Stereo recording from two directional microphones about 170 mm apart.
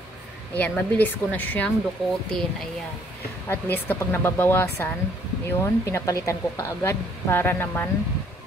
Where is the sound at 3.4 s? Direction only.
10° left (ahead or behind).